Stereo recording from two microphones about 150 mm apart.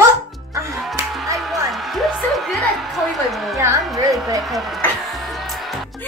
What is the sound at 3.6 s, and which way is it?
Speech, 20° right (ahead or behind).